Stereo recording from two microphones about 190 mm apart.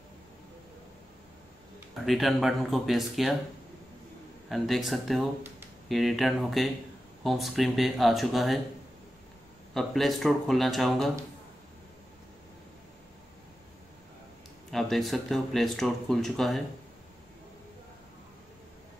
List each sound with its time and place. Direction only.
2.0 s speech: centre (ahead or behind)
4.5 s speech: centre (ahead or behind)
9.8 s speech: centre (ahead or behind)
14.7 s speech: centre (ahead or behind)